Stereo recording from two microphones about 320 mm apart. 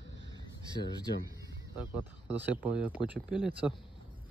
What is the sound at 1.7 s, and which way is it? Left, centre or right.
Speech, centre.